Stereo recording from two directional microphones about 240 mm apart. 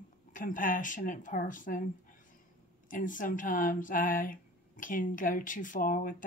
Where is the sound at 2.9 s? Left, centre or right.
Left.